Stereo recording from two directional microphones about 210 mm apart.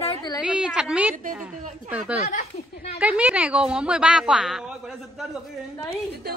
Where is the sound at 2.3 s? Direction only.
30° left (ahead or behind).